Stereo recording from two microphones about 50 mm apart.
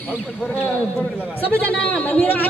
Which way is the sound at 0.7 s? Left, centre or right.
Left.